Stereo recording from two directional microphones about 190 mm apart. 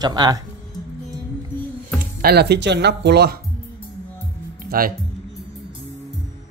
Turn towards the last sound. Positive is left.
turn(degrees=-50)  # may be behind; listen again after turning